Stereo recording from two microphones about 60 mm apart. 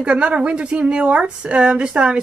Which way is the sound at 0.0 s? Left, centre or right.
Centre.